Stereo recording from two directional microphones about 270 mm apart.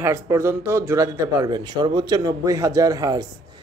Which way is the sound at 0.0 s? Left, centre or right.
Centre.